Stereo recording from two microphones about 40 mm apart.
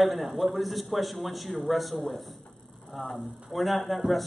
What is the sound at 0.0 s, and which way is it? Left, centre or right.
A man's voice, centre.